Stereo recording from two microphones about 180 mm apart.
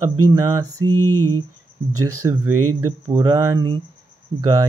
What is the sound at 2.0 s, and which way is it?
Speech, 20° right (ahead or behind).